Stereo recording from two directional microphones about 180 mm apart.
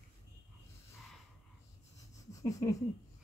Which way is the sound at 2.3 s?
20° left (ahead or behind).